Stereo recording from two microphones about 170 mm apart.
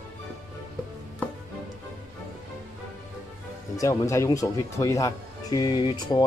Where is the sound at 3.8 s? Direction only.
15° left (ahead or behind).